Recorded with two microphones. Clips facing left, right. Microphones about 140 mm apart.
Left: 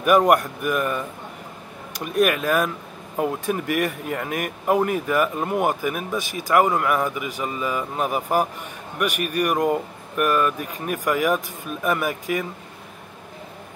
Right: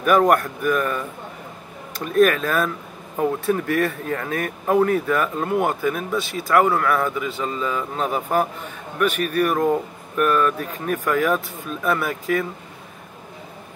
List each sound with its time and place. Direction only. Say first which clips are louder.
0.0 s speech: even; 10° left (ahead or behind)